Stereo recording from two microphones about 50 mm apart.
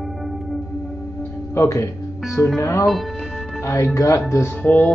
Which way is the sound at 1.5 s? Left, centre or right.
Left.